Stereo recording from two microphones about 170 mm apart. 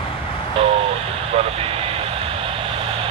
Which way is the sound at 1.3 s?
35° right (ahead or behind).